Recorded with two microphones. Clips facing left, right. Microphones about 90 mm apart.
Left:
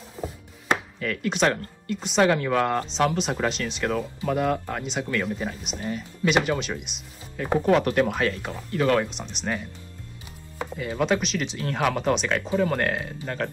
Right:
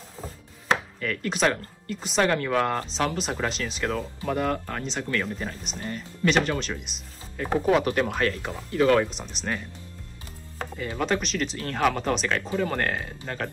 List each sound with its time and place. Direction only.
0.9 s speech: centre (ahead or behind)
10.8 s speech: 5° left (ahead or behind)